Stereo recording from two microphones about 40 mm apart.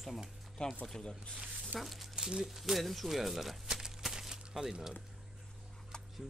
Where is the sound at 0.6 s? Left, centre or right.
Left.